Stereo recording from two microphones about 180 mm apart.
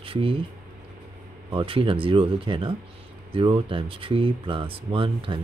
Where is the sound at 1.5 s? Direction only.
30° right (ahead or behind).